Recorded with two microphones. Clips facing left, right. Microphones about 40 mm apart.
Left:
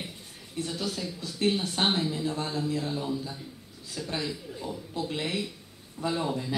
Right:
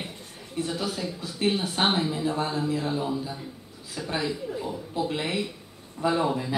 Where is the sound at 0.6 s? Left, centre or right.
Centre.